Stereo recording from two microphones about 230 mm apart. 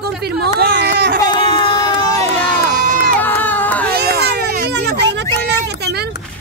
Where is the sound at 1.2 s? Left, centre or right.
Centre.